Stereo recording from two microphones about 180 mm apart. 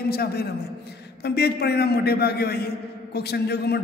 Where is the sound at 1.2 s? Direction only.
65° left (ahead or behind).